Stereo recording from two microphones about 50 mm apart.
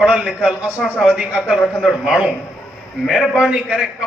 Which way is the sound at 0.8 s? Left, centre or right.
Centre.